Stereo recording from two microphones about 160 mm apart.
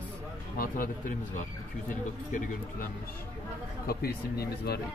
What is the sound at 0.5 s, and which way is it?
Speech, 60° left (ahead or behind).